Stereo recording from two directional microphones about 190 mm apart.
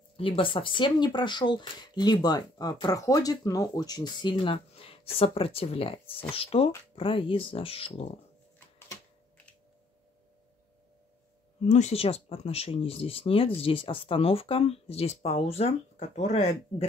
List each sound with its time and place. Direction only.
0.2 s speech: 25° left (ahead or behind)
8.5 s a sound: 15° left (ahead or behind)
11.6 s speech: 35° left (ahead or behind)